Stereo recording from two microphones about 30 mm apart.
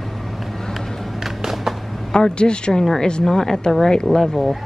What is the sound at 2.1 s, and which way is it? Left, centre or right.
Speech, left.